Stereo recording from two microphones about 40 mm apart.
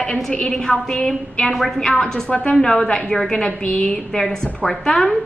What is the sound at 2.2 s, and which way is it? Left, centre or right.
Speech, left.